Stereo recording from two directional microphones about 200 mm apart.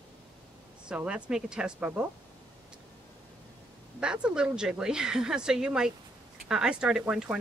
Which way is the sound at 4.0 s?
5° right (ahead or behind).